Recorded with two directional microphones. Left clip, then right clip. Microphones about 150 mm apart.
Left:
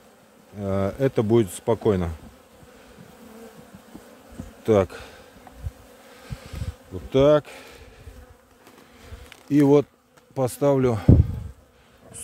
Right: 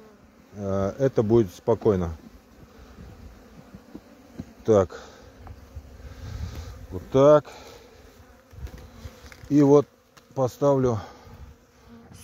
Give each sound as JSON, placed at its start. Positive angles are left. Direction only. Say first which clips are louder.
{"t": 0.6, "sound": "speech", "louder": "left 1 dB", "side_deg": 30}
{"t": 4.6, "sound": "speech", "louder": "even", "side_deg": 25}
{"t": 7.1, "sound": "speech", "louder": "right 1 dB", "side_deg": 10}
{"t": 9.5, "sound": "speech", "louder": "even", "side_deg": 20}